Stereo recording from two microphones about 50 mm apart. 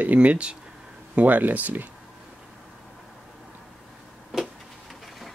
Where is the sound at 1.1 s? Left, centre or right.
Right.